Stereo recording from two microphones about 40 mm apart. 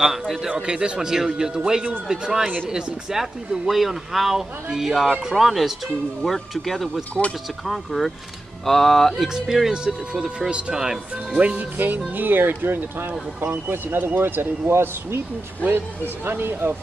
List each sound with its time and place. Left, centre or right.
0.5 s speech: right
1.0 s speech: centre
3.6 s speech: centre
7.2 s speech: centre
7.6 s speech: centre
9.1 s speech: centre
11.3 s speech: right
11.7 s speech: right
16.3 s speech: right